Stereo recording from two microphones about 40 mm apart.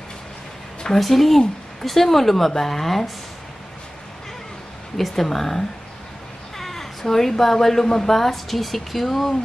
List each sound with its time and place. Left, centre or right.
0.8 s speech: centre
4.9 s speech: centre